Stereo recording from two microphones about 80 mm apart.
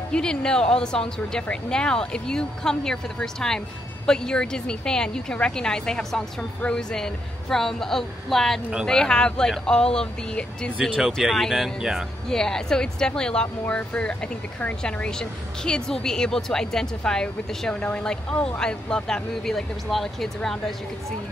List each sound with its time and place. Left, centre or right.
0.1 s a woman's voice: centre
11.0 s speech: centre
12.3 s a woman's voice: centre